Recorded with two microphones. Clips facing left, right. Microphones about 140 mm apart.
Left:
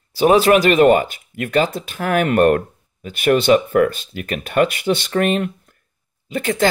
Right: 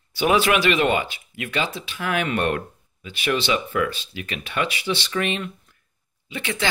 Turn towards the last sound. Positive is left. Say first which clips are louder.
# left 9 dB
turn(degrees=45)  # may be behind; listen again after turning